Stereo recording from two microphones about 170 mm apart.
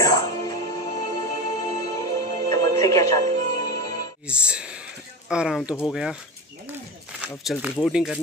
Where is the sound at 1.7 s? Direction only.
20° left (ahead or behind).